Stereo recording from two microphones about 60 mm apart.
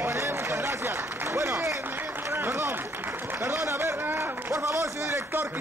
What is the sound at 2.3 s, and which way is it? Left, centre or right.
Run, right.